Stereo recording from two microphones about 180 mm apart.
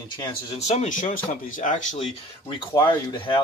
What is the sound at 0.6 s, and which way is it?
A man's voice, 40° left (ahead or behind).